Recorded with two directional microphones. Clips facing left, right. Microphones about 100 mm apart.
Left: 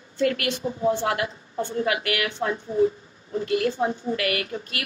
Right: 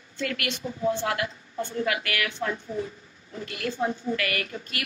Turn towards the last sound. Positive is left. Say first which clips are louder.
# left 3 dB
turn(degrees=35)  # may be behind; listen again after turning